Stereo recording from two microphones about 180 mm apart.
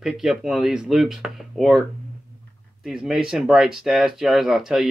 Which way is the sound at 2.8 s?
Centre (ahead or behind).